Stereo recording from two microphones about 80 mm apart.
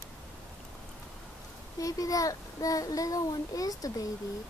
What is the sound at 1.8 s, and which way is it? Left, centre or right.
A child's voice, left.